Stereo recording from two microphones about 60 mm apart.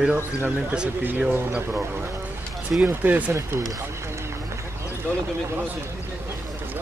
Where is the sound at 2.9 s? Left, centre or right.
Right.